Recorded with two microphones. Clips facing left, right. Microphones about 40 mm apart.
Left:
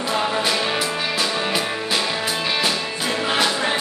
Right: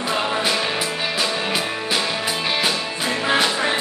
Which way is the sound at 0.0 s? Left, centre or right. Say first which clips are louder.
Even; centre.